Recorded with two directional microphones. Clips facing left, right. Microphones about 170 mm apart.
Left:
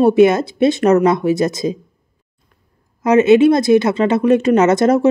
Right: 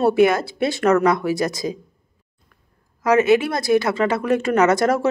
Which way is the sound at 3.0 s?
20° left (ahead or behind).